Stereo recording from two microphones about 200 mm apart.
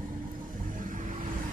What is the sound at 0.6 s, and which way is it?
Vehicle, 40° right (ahead or behind).